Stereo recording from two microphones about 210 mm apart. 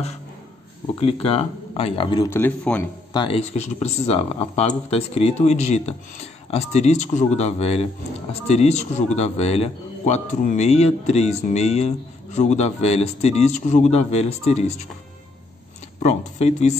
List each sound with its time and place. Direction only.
0.9 s speech: 25° left (ahead or behind); by 2.8 s 5° left (ahead or behind)
3.1 s speech: 25° left (ahead or behind)
16.0 s speech: 30° left (ahead or behind)